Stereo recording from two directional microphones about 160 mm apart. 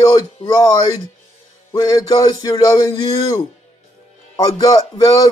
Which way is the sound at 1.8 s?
25° left (ahead or behind).